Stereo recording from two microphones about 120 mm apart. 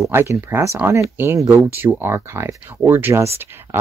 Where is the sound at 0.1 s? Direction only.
20° right (ahead or behind).